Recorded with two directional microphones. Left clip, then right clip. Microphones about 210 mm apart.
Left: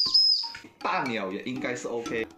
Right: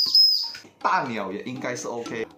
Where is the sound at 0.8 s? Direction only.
15° right (ahead or behind).